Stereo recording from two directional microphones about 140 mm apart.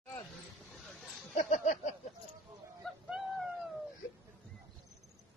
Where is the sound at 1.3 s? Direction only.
55° left (ahead or behind).